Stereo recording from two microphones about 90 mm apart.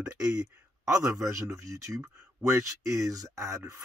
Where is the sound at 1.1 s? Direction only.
35° right (ahead or behind).